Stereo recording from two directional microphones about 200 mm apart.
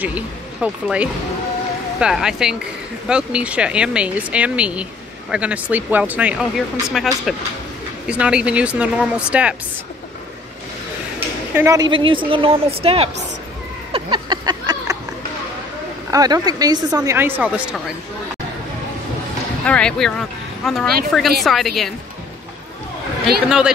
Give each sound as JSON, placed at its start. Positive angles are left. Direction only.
{"t": 0.0, "sound": "speech", "side_deg": -5}
{"t": 11.5, "sound": "a woman's voice", "side_deg": -15}
{"t": 13.9, "sound": "a sound", "side_deg": -25}
{"t": 16.1, "sound": "a woman's voice", "side_deg": -20}
{"t": 19.6, "sound": "speech", "side_deg": 5}
{"t": 23.2, "sound": "speech", "side_deg": -5}